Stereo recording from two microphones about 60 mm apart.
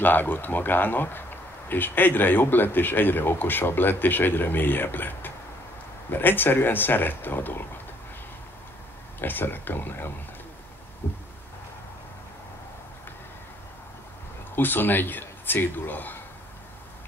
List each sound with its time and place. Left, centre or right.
0.0 s speech: left
9.2 s speech: left
14.5 s speech: left